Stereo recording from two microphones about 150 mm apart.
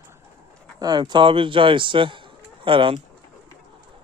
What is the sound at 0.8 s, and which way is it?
Speech, 30° right (ahead or behind).